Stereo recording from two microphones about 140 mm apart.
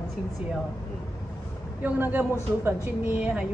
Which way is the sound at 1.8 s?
15° right (ahead or behind).